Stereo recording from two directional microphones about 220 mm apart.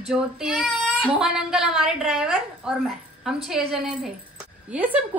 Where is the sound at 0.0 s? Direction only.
5° right (ahead or behind).